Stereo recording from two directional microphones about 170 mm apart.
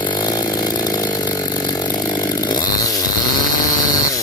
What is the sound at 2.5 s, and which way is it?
Chainsaw, 20° left (ahead or behind).